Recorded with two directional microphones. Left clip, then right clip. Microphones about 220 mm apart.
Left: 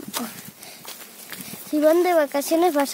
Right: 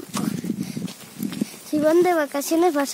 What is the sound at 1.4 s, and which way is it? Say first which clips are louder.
Speech: left 2 dB; centre (ahead or behind).